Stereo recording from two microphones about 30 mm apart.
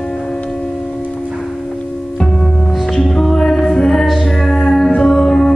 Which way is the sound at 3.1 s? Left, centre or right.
Centre.